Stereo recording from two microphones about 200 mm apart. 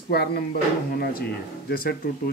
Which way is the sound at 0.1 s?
55° left (ahead or behind).